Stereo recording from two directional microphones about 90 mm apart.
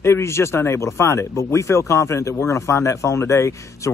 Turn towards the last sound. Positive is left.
turn(degrees=30)  # may be behind; listen again after turning